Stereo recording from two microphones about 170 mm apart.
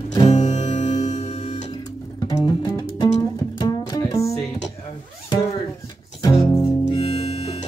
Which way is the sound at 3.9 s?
20° left (ahead or behind).